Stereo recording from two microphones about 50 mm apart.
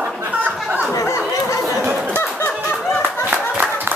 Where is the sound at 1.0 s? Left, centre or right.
Left.